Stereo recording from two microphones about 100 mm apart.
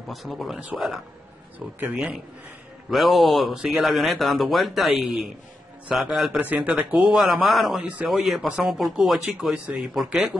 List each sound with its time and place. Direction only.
0.1 s speech: centre (ahead or behind)
1.8 s speech: 15° right (ahead or behind)
2.9 s speech: centre (ahead or behind)
6.4 s speech: 15° right (ahead or behind)